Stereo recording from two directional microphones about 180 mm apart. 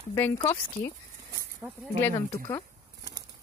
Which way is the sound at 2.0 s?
20° left (ahead or behind).